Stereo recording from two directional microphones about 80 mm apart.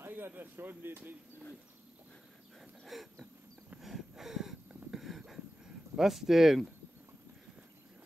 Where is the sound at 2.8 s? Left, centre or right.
Centre.